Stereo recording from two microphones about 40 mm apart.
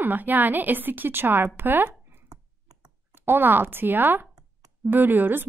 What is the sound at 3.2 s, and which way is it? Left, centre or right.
A woman's voice, right.